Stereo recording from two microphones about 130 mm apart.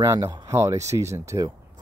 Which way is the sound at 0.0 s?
25° right (ahead or behind).